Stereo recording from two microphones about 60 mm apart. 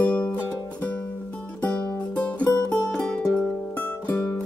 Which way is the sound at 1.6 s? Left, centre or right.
Left.